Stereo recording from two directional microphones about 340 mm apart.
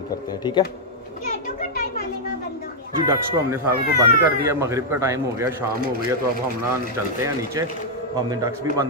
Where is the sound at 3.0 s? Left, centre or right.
Centre.